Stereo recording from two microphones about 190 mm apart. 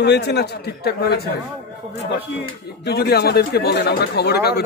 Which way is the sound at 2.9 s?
55° left (ahead or behind).